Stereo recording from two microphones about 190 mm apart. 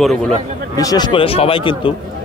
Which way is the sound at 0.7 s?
20° left (ahead or behind).